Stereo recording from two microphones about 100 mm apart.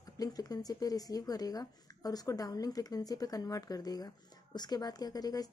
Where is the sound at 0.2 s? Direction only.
40° left (ahead or behind).